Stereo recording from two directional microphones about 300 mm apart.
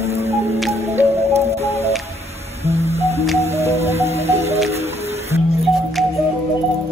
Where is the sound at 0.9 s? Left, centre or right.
Right.